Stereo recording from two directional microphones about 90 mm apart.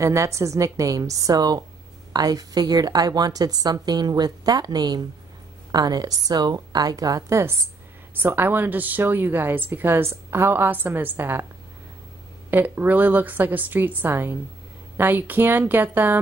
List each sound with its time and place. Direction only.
0.0 s a woman's voice: 35° right (ahead or behind)
8.1 s speech: 20° right (ahead or behind)
12.4 s speech: 20° right (ahead or behind)